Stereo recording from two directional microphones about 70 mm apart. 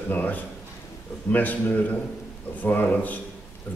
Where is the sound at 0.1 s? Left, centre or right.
Left.